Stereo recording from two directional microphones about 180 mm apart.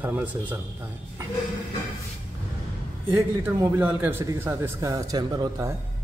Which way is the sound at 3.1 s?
20° right (ahead or behind).